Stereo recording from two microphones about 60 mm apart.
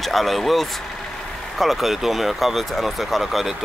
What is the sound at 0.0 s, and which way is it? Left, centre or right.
Speech, centre.